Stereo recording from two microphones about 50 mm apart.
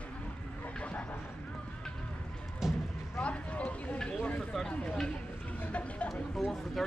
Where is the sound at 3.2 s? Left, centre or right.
Left.